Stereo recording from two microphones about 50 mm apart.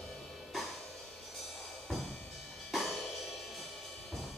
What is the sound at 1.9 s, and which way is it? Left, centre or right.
Music, centre.